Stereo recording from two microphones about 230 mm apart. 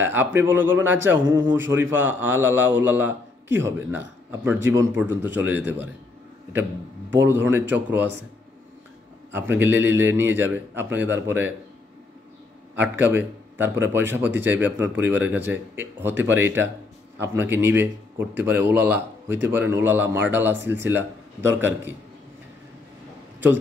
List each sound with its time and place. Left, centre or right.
0.0 s a man's voice: centre
7.2 s a man's voice: centre
9.6 s a man's voice: centre
12.7 s a man's voice: centre